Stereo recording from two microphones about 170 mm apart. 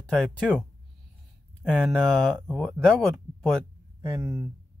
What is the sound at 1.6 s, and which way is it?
Speech, 5° left (ahead or behind).